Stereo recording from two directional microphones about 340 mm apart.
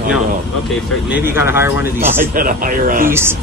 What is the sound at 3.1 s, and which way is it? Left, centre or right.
Speech, centre.